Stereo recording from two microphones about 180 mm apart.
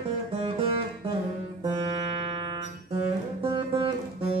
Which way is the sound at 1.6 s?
25° right (ahead or behind).